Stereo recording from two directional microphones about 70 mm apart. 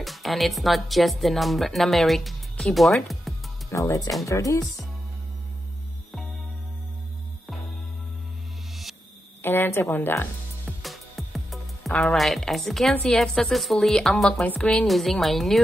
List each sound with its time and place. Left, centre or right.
0.0 s speech: centre
3.7 s speech: left
9.4 s a woman's voice: left
10.8 s music: centre
11.9 s speech: centre
14.4 s speech: left
14.9 s speech: centre